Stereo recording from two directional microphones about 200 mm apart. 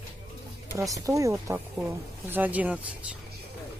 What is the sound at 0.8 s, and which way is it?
Speech, 15° right (ahead or behind).